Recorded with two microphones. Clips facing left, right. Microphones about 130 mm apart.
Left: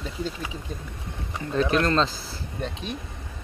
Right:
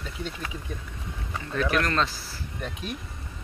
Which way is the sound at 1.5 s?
25° left (ahead or behind).